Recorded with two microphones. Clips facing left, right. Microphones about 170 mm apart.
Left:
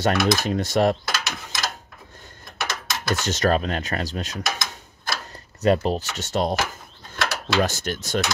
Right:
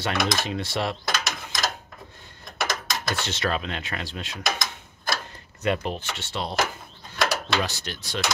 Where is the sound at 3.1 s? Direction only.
45° left (ahead or behind).